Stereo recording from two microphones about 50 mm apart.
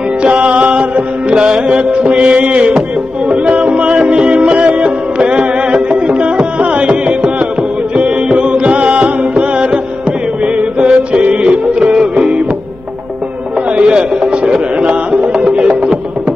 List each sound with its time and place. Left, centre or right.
0.5 s music: right
13.7 s music: right